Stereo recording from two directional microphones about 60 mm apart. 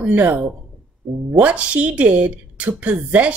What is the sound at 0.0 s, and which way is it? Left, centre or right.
A woman's voice, right.